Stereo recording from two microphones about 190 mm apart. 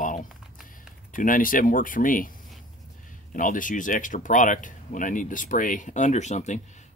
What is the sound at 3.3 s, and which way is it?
Speech, 45° left (ahead or behind).